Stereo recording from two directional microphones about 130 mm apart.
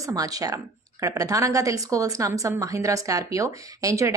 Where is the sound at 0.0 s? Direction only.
30° right (ahead or behind).